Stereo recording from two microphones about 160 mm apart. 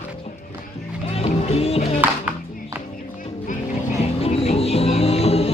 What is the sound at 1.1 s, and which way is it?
Music, 40° left (ahead or behind).